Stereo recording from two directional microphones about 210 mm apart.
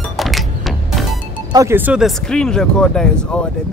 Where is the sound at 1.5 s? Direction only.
15° right (ahead or behind).